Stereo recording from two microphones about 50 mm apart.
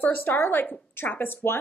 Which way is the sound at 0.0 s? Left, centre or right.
Left.